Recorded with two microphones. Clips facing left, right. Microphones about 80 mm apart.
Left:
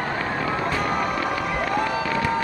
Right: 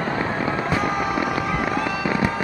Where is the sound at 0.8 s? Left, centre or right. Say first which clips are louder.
Right 1 dB; centre.